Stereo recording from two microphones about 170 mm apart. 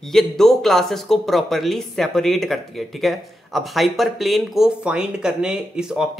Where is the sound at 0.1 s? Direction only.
Centre (ahead or behind).